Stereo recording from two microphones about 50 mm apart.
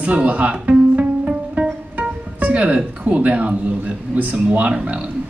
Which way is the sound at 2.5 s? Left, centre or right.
Right.